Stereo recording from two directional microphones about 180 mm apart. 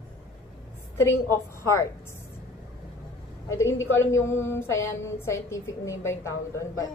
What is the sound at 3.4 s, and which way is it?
A woman's voice, 15° left (ahead or behind).